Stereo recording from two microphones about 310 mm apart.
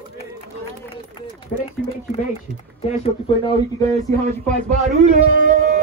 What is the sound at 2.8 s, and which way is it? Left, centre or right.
Speech, centre.